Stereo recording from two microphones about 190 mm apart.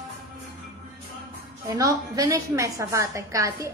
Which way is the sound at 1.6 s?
20° right (ahead or behind).